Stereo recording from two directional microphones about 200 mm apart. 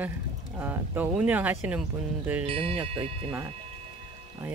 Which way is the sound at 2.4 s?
25° right (ahead or behind).